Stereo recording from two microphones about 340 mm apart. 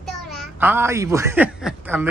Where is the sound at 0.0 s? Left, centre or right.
Centre.